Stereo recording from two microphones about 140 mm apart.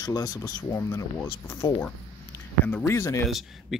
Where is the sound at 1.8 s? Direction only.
10° left (ahead or behind).